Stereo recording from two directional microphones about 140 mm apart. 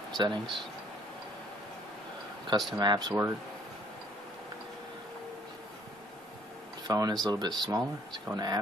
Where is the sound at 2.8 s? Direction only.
30° right (ahead or behind).